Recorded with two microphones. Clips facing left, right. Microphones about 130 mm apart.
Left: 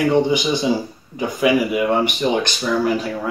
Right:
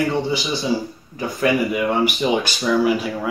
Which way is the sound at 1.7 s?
Centre (ahead or behind).